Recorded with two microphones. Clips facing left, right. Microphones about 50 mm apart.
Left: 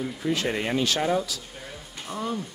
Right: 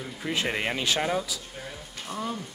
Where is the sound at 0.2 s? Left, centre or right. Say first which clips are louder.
Left 1 dB; right.